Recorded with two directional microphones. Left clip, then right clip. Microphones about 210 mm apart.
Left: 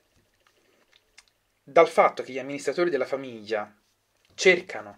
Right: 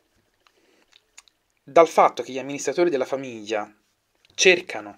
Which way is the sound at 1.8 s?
30° right (ahead or behind).